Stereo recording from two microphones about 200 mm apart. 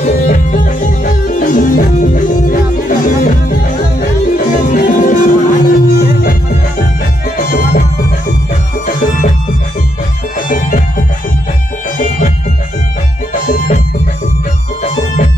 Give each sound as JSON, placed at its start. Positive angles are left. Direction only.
{"t": 0.0, "sound": "music", "side_deg": 40}
{"t": 4.4, "sound": "music", "side_deg": 45}
{"t": 7.3, "sound": "music", "side_deg": 45}
{"t": 10.5, "sound": "music", "side_deg": 45}
{"t": 13.3, "sound": "music", "side_deg": 40}
{"t": 14.8, "sound": "music", "side_deg": 40}